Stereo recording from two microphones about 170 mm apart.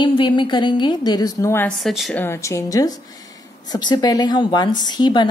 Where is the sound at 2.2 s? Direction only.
15° left (ahead or behind).